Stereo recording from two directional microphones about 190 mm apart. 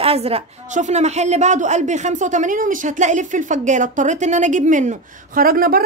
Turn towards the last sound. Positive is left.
turn(degrees=-50)  # may be behind; listen again after turning